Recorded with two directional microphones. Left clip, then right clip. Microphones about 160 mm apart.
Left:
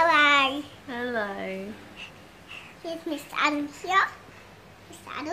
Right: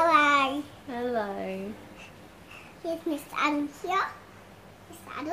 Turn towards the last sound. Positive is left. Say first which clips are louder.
# left 2 dB
turn(degrees=25)  # may be behind; listen again after turning